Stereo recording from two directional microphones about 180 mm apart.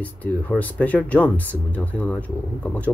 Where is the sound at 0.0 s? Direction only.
10° left (ahead or behind).